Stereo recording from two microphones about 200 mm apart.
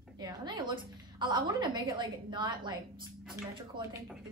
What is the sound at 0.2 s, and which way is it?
A woman's voice, 20° right (ahead or behind).